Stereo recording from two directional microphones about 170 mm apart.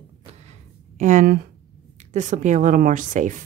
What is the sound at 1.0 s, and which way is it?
A woman's voice, 50° right (ahead or behind).